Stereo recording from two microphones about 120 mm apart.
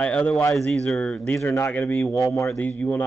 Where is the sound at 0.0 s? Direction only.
10° left (ahead or behind).